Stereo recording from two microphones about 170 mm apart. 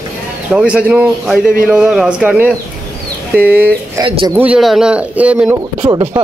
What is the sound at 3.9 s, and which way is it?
Speech, 25° right (ahead or behind).